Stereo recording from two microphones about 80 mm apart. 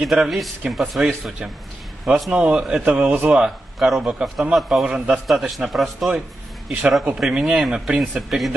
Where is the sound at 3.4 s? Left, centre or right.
Centre.